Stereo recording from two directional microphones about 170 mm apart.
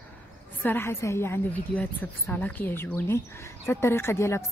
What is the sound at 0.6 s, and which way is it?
A woman's voice, 10° left (ahead or behind).